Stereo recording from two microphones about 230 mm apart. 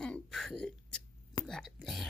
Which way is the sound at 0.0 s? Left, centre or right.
Centre.